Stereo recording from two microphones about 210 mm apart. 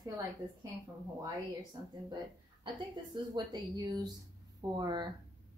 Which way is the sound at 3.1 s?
20° right (ahead or behind).